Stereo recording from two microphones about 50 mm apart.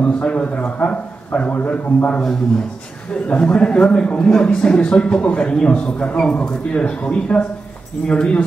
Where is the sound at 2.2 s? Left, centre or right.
Centre.